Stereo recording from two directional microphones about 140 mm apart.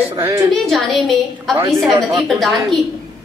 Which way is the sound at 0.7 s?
Centre (ahead or behind).